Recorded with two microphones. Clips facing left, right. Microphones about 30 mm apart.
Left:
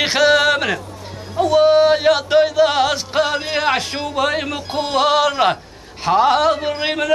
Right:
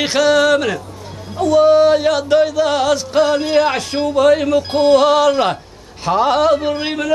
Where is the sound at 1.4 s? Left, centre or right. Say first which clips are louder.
Right 2 dB; centre.